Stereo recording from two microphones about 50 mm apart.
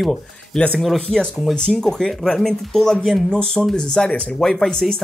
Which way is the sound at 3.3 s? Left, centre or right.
Left.